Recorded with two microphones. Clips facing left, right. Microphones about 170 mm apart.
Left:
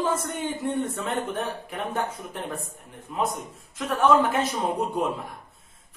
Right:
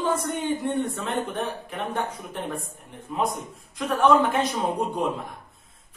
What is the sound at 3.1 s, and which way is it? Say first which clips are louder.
A man's voice: right 1 dB; centre (ahead or behind).